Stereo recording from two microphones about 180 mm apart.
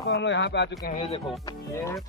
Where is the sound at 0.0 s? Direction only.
80° left.